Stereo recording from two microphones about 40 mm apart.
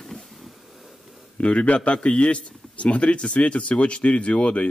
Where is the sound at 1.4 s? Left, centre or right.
Left.